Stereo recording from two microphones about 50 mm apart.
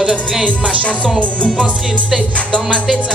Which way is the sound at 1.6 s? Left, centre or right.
Centre.